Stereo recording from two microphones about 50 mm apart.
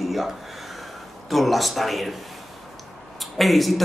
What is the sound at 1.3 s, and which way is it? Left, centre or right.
Speech, centre.